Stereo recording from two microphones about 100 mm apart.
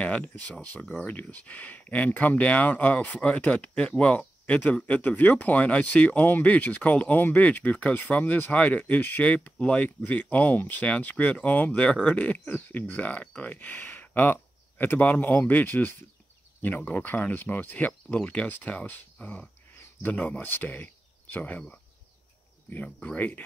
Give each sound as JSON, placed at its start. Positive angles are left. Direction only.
{"t": 0.0, "sound": "speech", "side_deg": 15}
{"t": 23.0, "sound": "speech", "side_deg": 15}